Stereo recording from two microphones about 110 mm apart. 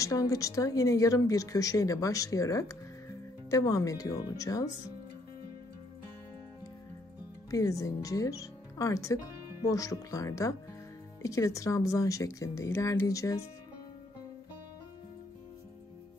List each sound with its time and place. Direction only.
0.0 s speech: 30° left (ahead or behind)
7.5 s speech: 30° left (ahead or behind)